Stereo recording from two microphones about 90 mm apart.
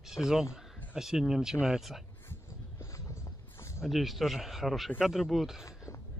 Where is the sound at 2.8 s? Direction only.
35° left (ahead or behind).